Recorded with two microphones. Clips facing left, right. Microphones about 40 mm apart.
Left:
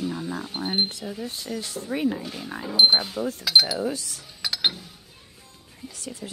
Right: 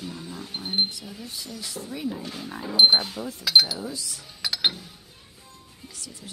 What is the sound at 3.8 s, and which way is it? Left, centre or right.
Speech, left.